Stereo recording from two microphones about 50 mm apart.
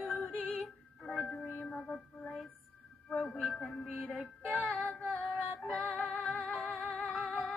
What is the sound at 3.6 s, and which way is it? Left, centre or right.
Music, centre.